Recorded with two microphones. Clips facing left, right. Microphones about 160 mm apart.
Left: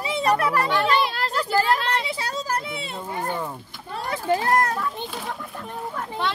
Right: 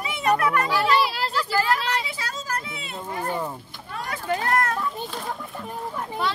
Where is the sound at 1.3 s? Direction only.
35° left (ahead or behind).